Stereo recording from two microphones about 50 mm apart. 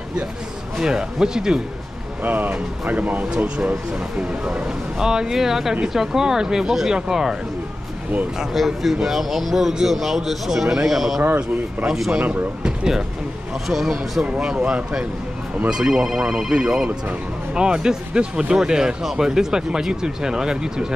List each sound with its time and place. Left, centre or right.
0.7 s speech: centre
2.2 s speech: right
4.2 s speech: centre
8.5 s speech: centre
14.4 s speech: centre